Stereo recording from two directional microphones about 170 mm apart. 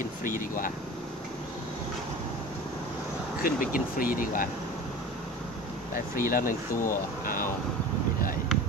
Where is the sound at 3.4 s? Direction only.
50° left (ahead or behind).